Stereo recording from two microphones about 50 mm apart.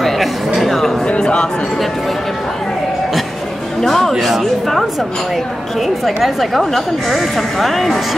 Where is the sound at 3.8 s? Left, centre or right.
Centre.